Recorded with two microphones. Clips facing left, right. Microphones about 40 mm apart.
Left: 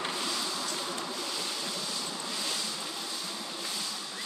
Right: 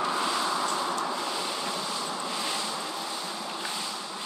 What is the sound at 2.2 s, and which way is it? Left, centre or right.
Vehicle, right.